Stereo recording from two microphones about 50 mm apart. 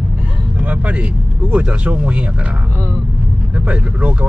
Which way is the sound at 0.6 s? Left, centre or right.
Right.